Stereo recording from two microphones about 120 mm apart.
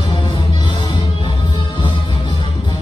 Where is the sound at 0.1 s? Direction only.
40° left (ahead or behind).